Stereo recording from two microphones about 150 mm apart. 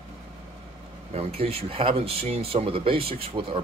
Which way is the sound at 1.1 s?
40° right (ahead or behind).